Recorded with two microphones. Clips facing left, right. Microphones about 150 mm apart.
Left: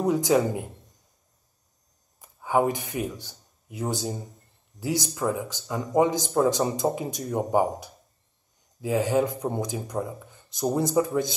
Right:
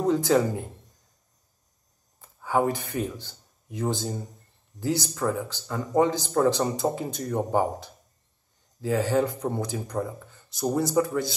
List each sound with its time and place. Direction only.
0.0 s speech: 15° left (ahead or behind)
2.1 s speech: 15° left (ahead or behind)